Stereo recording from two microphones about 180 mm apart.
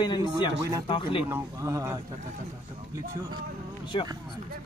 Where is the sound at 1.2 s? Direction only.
15° right (ahead or behind).